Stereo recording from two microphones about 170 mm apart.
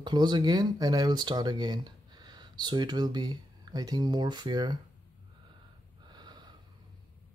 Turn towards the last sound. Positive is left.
turn(degrees=-25)  # may be behind; listen again after turning